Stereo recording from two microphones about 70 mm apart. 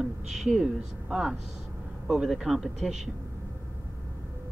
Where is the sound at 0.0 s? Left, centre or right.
Centre.